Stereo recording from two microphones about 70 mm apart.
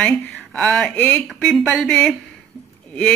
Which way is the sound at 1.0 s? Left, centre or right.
Left.